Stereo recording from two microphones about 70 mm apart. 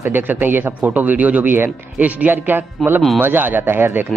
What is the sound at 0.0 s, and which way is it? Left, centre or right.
Speech, right.